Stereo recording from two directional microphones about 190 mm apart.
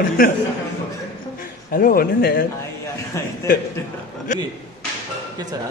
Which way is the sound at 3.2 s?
15° left (ahead or behind).